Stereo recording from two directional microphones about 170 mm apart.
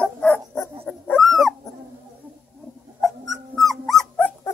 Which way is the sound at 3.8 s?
10° left (ahead or behind).